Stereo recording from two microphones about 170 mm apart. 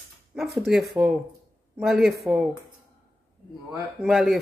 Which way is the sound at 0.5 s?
Centre (ahead or behind).